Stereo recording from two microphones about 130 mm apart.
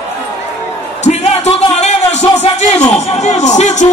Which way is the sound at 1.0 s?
60° left (ahead or behind).